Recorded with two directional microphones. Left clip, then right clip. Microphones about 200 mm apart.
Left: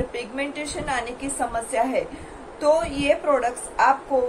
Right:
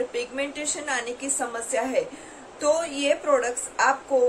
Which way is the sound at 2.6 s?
5° right (ahead or behind).